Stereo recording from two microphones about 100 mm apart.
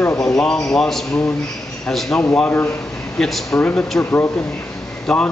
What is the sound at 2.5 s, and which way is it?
Speech, 20° left (ahead or behind).